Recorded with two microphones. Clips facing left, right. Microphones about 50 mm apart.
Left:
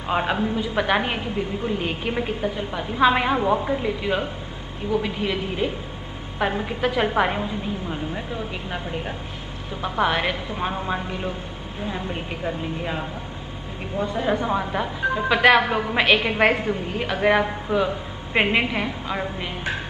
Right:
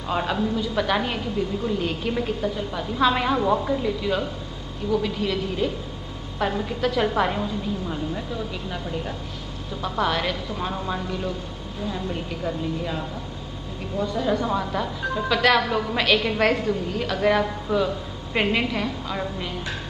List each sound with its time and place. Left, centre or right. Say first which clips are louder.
0.1 s a woman's voice: left 2 dB; left